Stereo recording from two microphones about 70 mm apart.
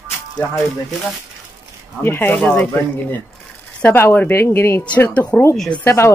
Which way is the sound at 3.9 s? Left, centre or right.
Left.